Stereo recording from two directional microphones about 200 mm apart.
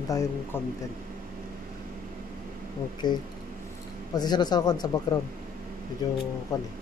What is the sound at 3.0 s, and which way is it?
Speech, 20° left (ahead or behind).